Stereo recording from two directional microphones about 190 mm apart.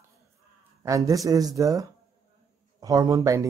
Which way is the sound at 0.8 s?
15° right (ahead or behind).